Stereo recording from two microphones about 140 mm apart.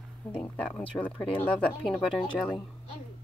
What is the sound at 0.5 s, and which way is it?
Speech, 10° left (ahead or behind).